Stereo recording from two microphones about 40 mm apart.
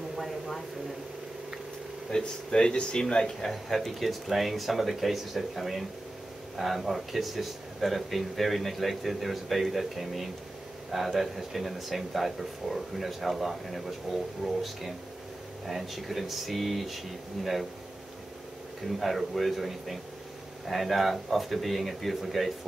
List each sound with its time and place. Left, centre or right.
0.1 s a sound: centre
2.0 s speech: centre
3.4 s speech: centre
18.9 s speech: centre